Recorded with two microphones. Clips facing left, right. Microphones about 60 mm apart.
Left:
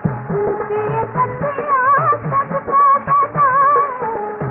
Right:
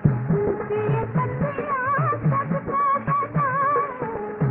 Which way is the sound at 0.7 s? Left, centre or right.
Centre.